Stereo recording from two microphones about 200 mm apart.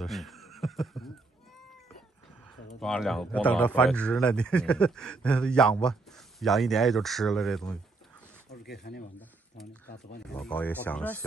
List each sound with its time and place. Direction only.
0.0 s snicker: centre (ahead or behind)
2.8 s a man's voice: centre (ahead or behind)
8.5 s speech: 55° left (ahead or behind)
10.2 s speech: 5° left (ahead or behind)